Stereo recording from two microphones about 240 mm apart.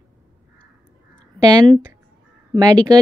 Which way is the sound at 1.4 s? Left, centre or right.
Centre.